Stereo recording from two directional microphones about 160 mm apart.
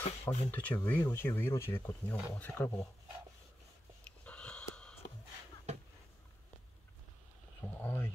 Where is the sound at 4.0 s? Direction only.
5° left (ahead or behind).